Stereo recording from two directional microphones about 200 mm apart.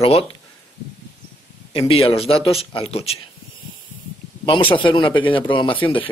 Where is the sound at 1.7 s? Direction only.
25° left (ahead or behind).